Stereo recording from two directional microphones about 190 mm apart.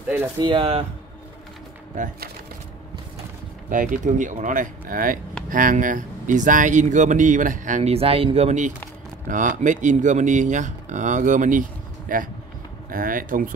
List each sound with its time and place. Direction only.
0.4 s speech: 25° right (ahead or behind)
2.0 s speech: 40° right (ahead or behind)
3.7 s speech: 45° right (ahead or behind)